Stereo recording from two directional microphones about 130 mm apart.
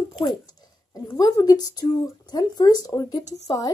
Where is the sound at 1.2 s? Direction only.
30° left (ahead or behind).